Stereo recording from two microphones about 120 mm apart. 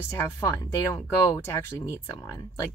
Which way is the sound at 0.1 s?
25° left (ahead or behind).